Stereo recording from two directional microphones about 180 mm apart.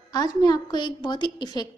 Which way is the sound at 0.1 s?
20° left (ahead or behind).